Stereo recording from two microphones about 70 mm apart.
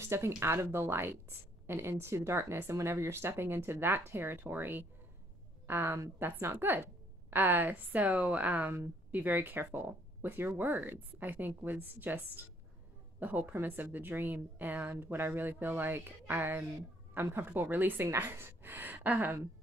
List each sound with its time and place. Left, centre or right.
0.0 s a woman's voice: right